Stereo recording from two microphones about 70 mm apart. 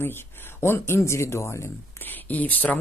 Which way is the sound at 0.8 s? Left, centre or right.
Left.